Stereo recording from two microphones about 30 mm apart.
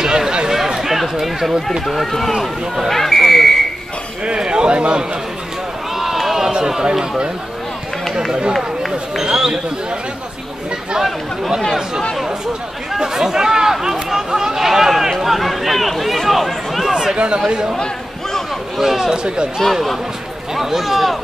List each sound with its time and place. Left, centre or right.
0.0 s a sound: centre
0.8 s a sound: centre
1.9 s speech: centre
4.4 s a man's voice: right
5.9 s run: centre
6.4 s run: right
6.8 s speech: right
8.3 s a man's voice: right
9.2 s speech: right
13.1 s speech: centre
16.9 s speech: centre
18.8 s speech: centre
19.0 s speech: right
20.5 s speech: centre